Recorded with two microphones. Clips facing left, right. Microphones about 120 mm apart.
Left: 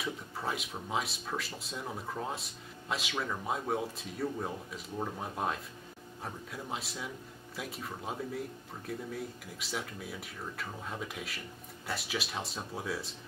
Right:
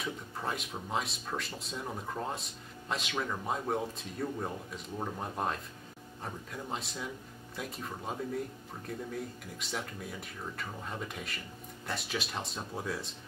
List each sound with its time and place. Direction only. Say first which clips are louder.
0.0 s speech: even; centre (ahead or behind)